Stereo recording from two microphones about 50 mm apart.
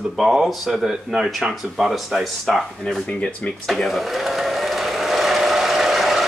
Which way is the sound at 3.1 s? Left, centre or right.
Left.